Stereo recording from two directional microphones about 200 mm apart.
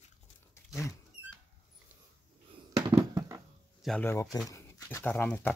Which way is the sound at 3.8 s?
10° left (ahead or behind).